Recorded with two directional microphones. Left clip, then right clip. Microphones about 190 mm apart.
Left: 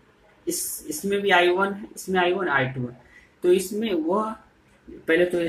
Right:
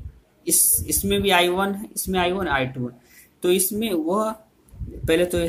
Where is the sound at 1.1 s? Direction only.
25° right (ahead or behind).